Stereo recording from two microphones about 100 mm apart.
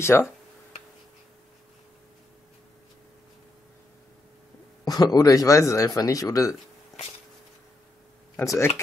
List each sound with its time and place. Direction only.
0.0 s speech: 25° left (ahead or behind)
4.8 s speech: 40° left (ahead or behind)
8.5 s speech: 25° left (ahead or behind)